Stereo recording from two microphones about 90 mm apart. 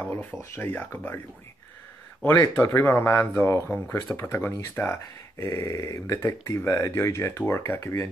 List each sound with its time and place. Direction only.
0.4 s speech: 25° left (ahead or behind)
2.5 s speech: 20° left (ahead or behind)